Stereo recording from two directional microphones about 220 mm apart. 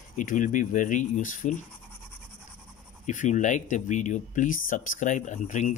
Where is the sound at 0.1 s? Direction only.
35° left (ahead or behind).